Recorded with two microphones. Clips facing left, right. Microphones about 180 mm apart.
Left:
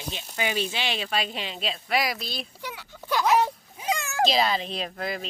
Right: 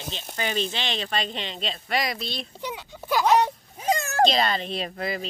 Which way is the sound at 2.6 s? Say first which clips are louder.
Right 4 dB; 20° right (ahead or behind).